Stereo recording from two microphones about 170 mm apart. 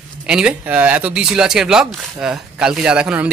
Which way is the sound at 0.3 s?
5° right (ahead or behind).